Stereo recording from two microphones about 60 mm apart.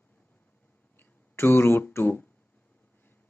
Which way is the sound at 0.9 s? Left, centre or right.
Left.